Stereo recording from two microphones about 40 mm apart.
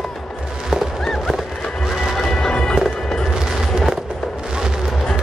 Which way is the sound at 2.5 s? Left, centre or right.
Centre.